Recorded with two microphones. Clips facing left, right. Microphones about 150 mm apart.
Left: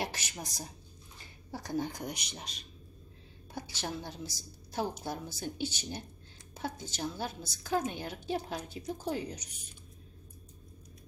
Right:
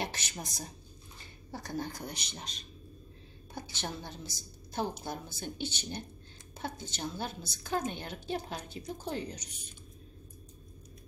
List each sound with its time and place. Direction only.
0.0 s a woman's voice: 5° left (ahead or behind)